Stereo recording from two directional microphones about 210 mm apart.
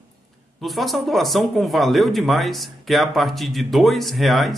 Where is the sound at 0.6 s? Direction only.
Centre (ahead or behind).